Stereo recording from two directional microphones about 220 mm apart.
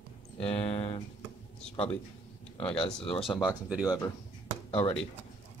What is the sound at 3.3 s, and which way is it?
Speech, 5° left (ahead or behind).